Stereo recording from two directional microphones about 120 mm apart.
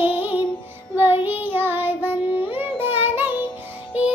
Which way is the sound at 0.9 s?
20° right (ahead or behind).